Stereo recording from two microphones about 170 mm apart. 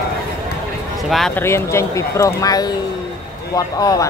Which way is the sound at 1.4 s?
15° left (ahead or behind).